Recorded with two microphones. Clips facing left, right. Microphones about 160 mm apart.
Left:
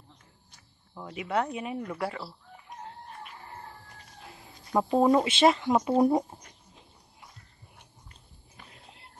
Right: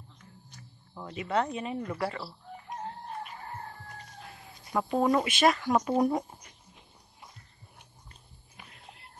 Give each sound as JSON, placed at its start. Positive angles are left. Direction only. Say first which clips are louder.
{"t": 0.9, "sound": "speech", "louder": "even", "side_deg": 10}
{"t": 4.7, "sound": "speech", "louder": "left 4 dB", "side_deg": 25}